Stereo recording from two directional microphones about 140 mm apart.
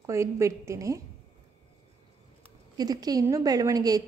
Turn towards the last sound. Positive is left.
turn(degrees=-25)  # may be behind; listen again after turning